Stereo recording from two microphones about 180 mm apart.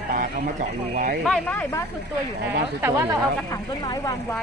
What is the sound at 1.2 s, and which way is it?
Speech, 5° left (ahead or behind).